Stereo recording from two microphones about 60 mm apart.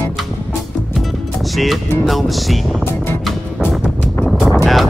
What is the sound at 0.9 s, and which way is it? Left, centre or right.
Music, centre.